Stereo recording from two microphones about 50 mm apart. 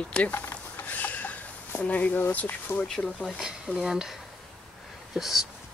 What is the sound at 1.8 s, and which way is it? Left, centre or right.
Speech, left.